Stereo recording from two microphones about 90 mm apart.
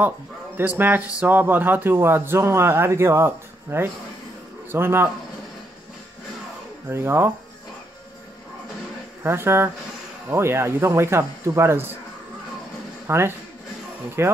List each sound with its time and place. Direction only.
0.6 s a man's voice: 20° right (ahead or behind)
6.9 s a man's voice: 30° right (ahead or behind)
9.2 s a man's voice: 25° right (ahead or behind)
13.0 s a man's voice: 30° right (ahead or behind)